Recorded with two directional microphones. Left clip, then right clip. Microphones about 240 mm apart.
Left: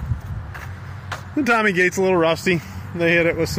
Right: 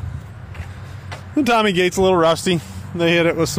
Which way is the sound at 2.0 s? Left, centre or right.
Centre.